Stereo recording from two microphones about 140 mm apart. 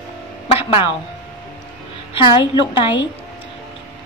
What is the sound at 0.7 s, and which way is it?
Speech, 35° left (ahead or behind).